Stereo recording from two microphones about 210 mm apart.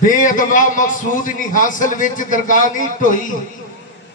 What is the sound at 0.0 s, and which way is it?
A man's voice, 40° left (ahead or behind).